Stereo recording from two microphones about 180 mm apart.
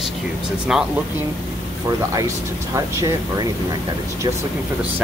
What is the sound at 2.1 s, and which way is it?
Speech, 15° right (ahead or behind).